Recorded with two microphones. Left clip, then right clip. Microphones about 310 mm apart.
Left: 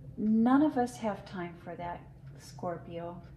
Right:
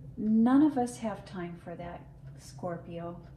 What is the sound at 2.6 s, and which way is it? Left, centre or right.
Speech, left.